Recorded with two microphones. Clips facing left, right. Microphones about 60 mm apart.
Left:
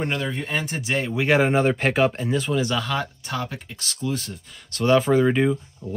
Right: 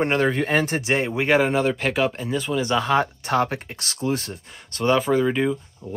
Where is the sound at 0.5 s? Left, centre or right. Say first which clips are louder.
Right 6 dB; right.